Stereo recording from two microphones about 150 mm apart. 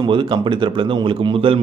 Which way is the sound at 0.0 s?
30° right (ahead or behind).